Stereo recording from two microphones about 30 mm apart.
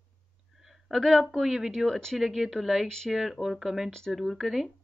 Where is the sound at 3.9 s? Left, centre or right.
Centre.